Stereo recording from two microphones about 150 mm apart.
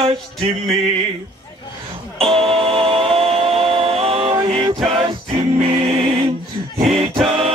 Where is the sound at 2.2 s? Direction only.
40° right (ahead or behind).